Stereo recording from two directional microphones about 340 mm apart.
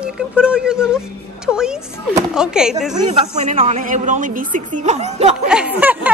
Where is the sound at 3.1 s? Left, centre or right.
Centre.